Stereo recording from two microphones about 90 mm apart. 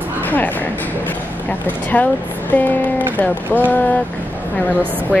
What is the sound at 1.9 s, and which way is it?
A woman's voice, 15° left (ahead or behind).